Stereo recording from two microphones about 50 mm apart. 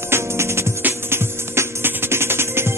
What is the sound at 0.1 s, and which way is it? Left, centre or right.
Music, right.